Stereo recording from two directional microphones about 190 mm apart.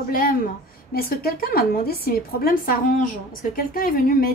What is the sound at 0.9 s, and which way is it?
A woman's voice, 50° left (ahead or behind).